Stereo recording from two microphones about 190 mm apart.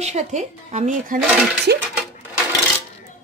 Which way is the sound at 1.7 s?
55° right (ahead or behind).